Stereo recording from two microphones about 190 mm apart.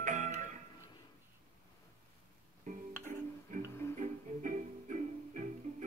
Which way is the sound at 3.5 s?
40° right (ahead or behind).